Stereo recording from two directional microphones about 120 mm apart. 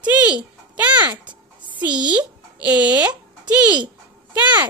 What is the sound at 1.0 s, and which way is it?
Speech, 40° right (ahead or behind).